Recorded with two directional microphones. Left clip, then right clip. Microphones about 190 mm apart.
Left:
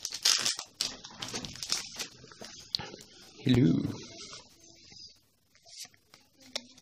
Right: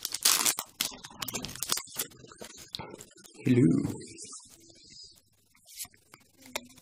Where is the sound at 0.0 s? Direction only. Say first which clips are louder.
Even; 40° right (ahead or behind).